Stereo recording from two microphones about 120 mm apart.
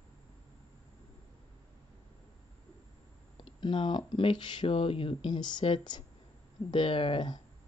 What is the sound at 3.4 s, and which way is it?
Speech, 40° left (ahead or behind).